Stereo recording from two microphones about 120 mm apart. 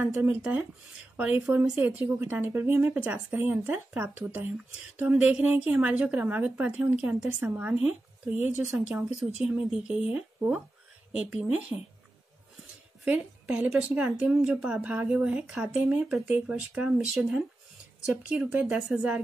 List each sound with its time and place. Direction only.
0.0 s a woman's voice: 15° right (ahead or behind)